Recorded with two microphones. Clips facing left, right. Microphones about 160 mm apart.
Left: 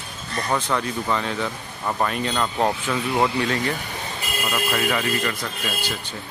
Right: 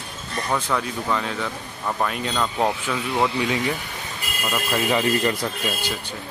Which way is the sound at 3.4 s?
10° right (ahead or behind).